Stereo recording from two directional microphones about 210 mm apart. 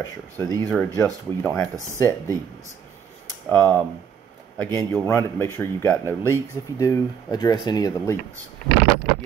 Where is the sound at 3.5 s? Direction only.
20° right (ahead or behind).